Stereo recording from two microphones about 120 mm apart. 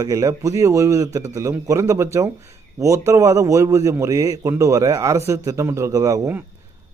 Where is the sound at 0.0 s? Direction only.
25° right (ahead or behind).